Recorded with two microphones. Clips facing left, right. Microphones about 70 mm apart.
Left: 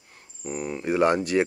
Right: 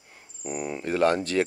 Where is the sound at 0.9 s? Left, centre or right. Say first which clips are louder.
Left 2 dB; centre.